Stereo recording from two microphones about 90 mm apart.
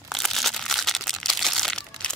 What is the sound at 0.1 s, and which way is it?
Crumpling, centre (ahead or behind).